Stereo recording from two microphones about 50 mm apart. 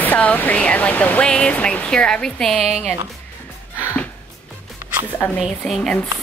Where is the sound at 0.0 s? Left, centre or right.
Left.